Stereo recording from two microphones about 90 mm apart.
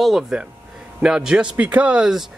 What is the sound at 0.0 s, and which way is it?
Speech, 5° right (ahead or behind).